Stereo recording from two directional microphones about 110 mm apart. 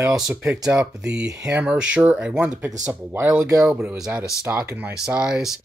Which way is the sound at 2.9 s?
20° right (ahead or behind).